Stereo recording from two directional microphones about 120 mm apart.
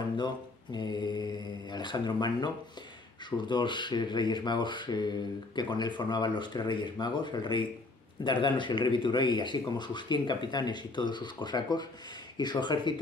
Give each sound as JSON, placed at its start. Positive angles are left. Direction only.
{"t": 0.7, "sound": "a man's voice", "side_deg": 35}